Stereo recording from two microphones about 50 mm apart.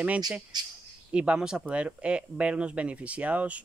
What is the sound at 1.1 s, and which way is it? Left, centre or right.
Speech, right.